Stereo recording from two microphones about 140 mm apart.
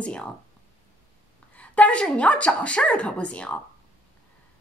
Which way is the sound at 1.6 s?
10° left (ahead or behind).